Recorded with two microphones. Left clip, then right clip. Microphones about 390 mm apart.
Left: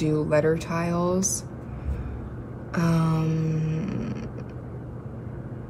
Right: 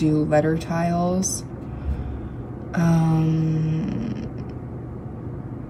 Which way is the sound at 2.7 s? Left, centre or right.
Centre.